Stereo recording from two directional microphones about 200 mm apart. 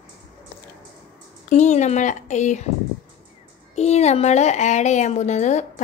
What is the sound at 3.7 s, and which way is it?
Speech, 35° left (ahead or behind).